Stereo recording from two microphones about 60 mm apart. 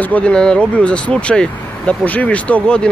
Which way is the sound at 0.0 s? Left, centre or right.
Left.